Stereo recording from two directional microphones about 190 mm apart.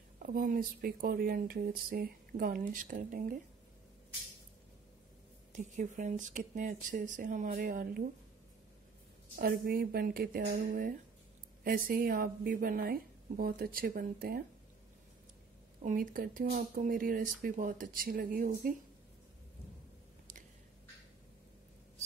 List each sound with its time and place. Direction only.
0.2 s speech: 45° right (ahead or behind)
5.5 s speech: 40° right (ahead or behind)
9.4 s speech: 50° right (ahead or behind)
15.8 s speech: 45° right (ahead or behind)